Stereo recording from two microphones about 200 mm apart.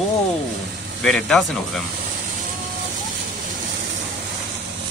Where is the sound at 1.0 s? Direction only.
Centre (ahead or behind).